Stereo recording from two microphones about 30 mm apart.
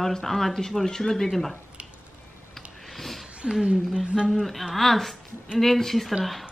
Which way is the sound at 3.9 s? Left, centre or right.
Right.